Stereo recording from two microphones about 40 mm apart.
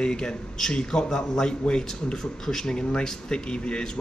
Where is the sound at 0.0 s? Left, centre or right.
Left.